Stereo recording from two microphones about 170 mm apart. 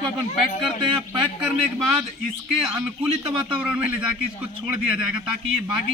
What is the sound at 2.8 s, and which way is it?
A man's voice, 5° right (ahead or behind).